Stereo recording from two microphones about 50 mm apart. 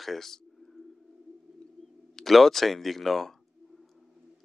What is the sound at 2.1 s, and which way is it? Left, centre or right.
Speech, centre.